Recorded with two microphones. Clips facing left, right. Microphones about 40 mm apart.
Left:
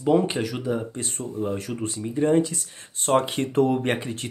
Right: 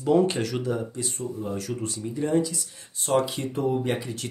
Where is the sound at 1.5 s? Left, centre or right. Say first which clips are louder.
Left 2 dB; left.